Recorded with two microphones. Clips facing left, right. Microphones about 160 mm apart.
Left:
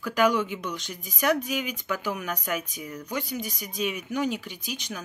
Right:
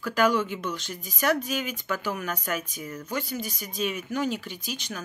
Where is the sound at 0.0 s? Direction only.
15° left (ahead or behind).